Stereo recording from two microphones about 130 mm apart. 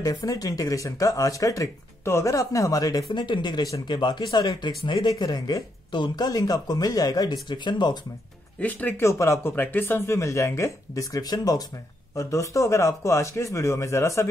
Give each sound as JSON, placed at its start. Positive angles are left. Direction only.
{"t": 0.0, "sound": "speech", "side_deg": 25}
{"t": 8.5, "sound": "speech", "side_deg": 15}